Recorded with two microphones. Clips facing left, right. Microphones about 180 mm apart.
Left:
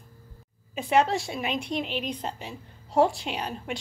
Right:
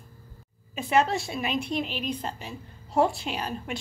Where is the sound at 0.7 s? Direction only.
15° left (ahead or behind).